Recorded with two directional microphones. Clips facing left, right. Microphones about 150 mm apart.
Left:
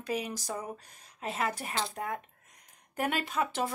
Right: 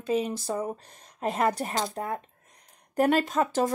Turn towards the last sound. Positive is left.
turn(degrees=-40)  # may be behind; listen again after turning